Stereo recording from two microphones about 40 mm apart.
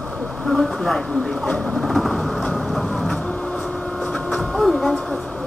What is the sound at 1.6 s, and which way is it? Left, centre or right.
Vehicle, centre.